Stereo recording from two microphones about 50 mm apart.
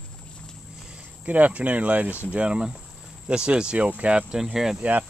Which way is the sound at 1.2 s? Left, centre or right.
Right.